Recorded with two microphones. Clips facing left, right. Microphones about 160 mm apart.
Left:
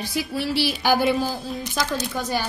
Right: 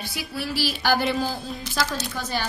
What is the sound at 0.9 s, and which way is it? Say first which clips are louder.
Speech: left 3 dB; 5° left (ahead or behind).